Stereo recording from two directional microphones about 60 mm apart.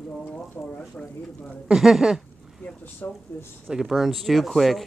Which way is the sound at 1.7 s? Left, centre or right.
Centre.